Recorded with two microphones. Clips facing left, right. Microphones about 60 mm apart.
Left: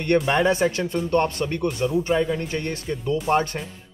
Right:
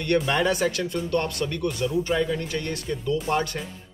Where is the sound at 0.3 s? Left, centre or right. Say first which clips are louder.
Left 3 dB; left.